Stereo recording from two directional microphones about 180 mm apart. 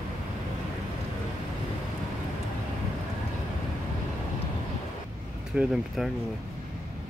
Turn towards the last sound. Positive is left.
turn(degrees=0)  # may be behind; listen again after turning